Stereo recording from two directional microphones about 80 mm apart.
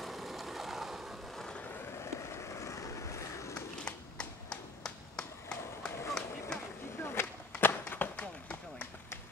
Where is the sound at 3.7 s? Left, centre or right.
Centre.